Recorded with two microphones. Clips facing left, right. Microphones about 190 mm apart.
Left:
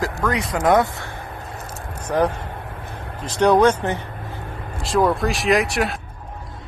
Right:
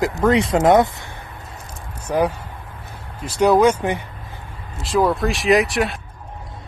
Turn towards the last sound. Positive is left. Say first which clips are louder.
# right 2 dB
turn(degrees=0)  # may be behind; listen again after turning